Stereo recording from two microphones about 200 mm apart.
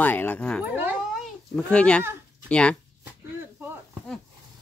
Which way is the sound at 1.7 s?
5° left (ahead or behind).